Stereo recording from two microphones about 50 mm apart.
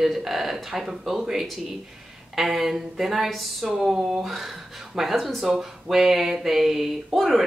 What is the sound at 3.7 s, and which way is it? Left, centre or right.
Speech, centre.